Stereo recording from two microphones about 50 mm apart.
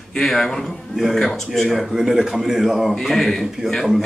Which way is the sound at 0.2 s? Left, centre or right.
Centre.